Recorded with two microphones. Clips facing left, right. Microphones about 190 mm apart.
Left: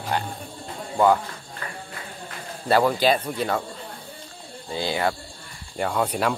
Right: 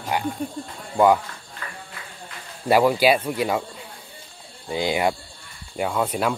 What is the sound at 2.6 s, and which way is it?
Speech, 10° right (ahead or behind).